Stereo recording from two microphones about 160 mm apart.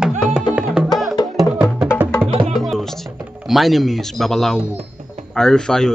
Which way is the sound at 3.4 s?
Centre (ahead or behind).